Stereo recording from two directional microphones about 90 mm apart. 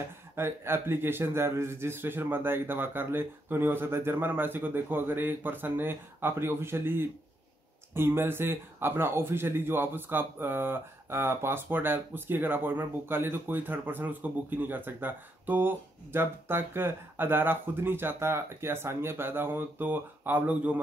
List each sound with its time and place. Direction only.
0.4 s speech: 25° right (ahead or behind)